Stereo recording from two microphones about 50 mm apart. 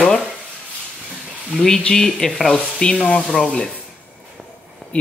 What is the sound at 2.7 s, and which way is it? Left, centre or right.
Speech, centre.